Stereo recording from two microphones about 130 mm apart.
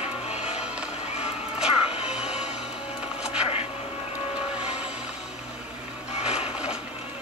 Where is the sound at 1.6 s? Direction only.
55° left (ahead or behind).